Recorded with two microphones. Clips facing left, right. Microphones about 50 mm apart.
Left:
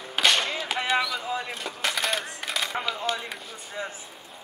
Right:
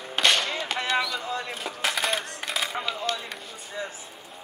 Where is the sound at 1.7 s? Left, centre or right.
Centre.